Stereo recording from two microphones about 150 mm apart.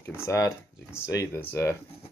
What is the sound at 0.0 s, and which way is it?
Speech, 15° left (ahead or behind).